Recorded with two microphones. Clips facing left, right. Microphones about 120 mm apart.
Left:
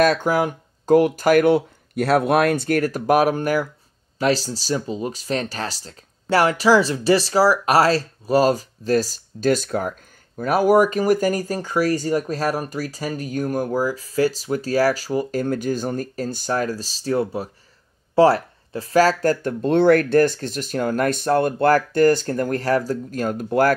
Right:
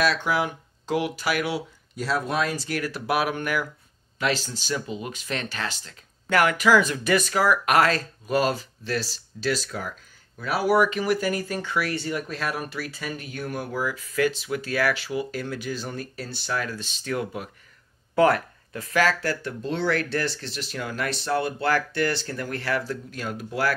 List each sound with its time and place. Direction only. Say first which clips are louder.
0.0 s speech: left 6 dB; 45° left (ahead or behind)